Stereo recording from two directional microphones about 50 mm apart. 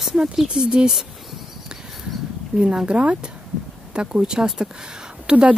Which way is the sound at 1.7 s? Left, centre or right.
Centre.